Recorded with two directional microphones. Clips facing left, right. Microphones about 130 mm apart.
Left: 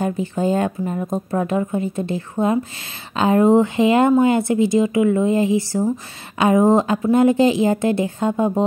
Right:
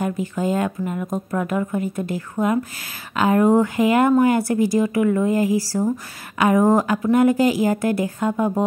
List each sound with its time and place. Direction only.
0.0 s speech: 30° left (ahead or behind)